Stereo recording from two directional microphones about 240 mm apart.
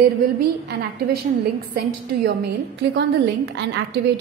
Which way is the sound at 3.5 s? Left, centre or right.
Right.